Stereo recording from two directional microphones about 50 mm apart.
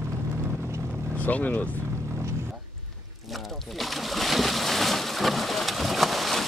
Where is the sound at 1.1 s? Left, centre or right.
Left.